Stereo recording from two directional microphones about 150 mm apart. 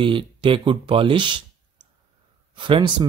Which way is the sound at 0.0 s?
35° right (ahead or behind).